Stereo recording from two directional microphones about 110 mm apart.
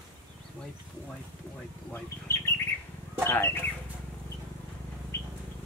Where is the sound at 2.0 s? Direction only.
25° left (ahead or behind).